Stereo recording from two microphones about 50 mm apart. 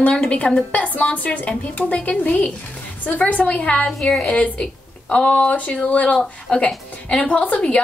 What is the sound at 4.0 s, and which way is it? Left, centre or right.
Speech, centre.